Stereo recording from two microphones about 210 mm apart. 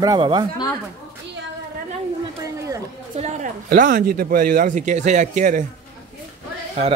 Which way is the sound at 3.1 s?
35° right (ahead or behind).